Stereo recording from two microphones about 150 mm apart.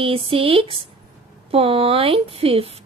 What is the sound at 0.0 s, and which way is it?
Speech, 40° right (ahead or behind).